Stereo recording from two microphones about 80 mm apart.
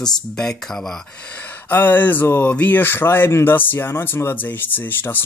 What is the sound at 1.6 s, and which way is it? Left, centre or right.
Speech, left.